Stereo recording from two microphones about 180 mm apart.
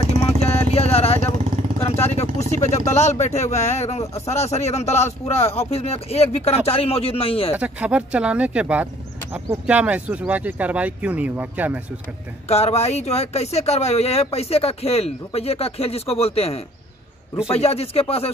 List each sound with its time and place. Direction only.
0.4 s vehicle: 35° left (ahead or behind)
2.1 s speech: 40° left (ahead or behind)
7.5 s speech: 10° right (ahead or behind)
12.4 s speech: 35° left (ahead or behind)